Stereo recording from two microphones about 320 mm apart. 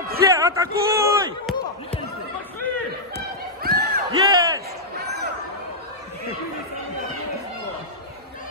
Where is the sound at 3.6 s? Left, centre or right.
Right.